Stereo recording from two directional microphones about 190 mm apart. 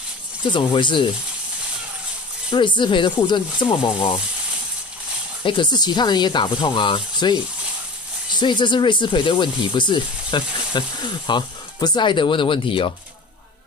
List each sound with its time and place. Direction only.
0.5 s speech: 25° left (ahead or behind)
2.5 s speech: 25° left (ahead or behind)
5.4 s speech: 25° left (ahead or behind)